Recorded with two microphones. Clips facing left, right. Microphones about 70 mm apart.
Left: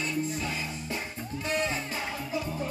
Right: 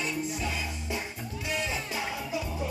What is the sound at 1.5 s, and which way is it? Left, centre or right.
Music, left.